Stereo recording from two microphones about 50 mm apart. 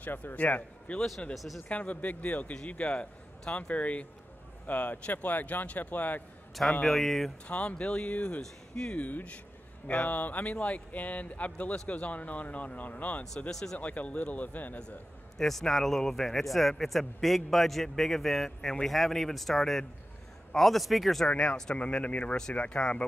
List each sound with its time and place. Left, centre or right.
0.0 s speech: left
1.3 s a man's voice: centre
1.7 s speech: left
6.8 s a man's voice: centre
7.4 s speech: left
8.4 s speech: centre
8.9 s speech: left
13.5 s speech: centre
13.7 s speech: left
15.3 s a man's voice: centre
21.3 s speech: left
21.7 s speech: left